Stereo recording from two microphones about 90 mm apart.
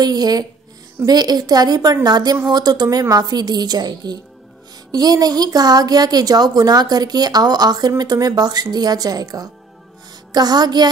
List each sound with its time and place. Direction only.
0.0 s a woman's voice: 50° right (ahead or behind)